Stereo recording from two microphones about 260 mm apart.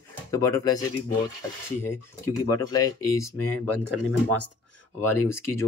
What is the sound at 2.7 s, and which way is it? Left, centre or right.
Speech, centre.